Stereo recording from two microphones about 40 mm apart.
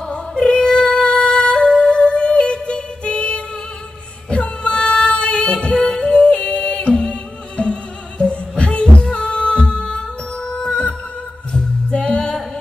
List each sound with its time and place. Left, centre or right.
0.1 s music: centre; by 8.8 s left
9.0 s music: left